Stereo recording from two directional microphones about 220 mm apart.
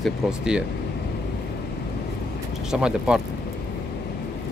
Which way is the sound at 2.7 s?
5° right (ahead or behind).